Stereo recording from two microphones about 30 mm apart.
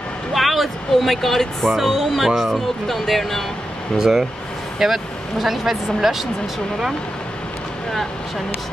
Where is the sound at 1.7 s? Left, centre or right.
Centre.